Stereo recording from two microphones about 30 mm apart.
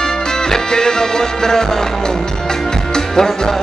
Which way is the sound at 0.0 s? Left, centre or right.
Left.